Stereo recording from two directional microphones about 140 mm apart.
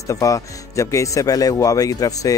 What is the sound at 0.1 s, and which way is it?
Speech, 25° left (ahead or behind).